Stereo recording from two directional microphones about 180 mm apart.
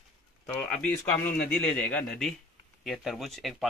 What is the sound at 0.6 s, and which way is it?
Speech, 5° left (ahead or behind).